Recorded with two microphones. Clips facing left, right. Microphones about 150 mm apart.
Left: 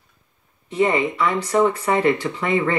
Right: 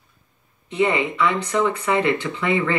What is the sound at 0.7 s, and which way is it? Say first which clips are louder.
Speech: left 1 dB; 35° left (ahead or behind).